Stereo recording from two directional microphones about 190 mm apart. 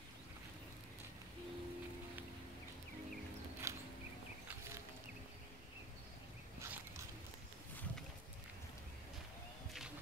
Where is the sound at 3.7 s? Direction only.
15° right (ahead or behind).